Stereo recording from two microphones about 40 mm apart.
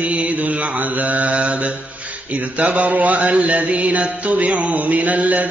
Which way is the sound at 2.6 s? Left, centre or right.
Right.